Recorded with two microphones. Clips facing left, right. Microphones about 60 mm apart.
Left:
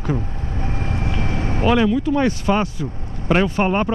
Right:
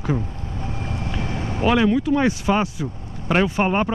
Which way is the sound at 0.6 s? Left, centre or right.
Left.